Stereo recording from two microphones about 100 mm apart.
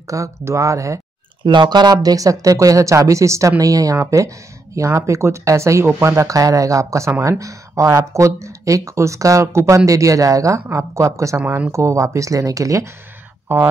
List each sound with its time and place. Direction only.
0.1 s speech: 30° right (ahead or behind)
1.4 s speech: 50° right (ahead or behind); by 11.4 s 30° right (ahead or behind)
11.4 s speech: 20° right (ahead or behind)
13.5 s speech: 20° right (ahead or behind)